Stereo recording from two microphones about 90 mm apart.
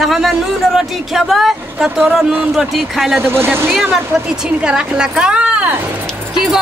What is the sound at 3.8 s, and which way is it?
A woman's voice, 10° right (ahead or behind).